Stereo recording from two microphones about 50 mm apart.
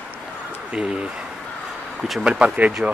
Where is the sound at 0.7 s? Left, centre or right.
Centre.